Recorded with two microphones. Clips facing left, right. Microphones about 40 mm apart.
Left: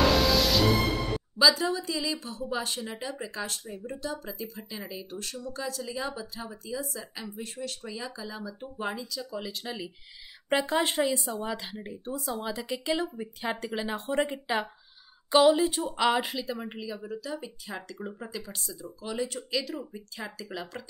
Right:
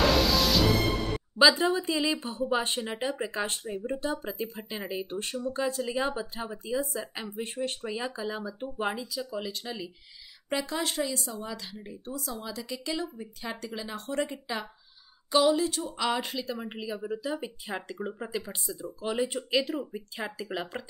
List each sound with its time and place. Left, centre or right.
0.0 s music: centre
1.4 s a woman's voice: right
9.0 s speech: centre
10.5 s speech: left
15.8 s speech: centre
16.6 s a woman's voice: centre